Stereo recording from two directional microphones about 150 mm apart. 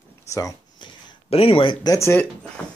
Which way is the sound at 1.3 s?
40° left (ahead or behind).